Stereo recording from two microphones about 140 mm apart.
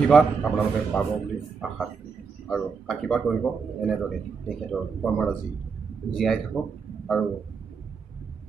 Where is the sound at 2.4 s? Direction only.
Centre (ahead or behind).